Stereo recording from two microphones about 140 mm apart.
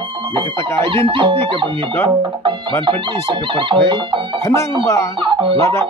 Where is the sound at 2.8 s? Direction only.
35° right (ahead or behind).